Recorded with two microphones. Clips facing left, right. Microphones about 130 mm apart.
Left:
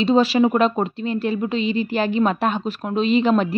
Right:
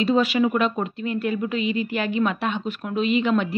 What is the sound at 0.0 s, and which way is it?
A woman's voice, 30° left (ahead or behind).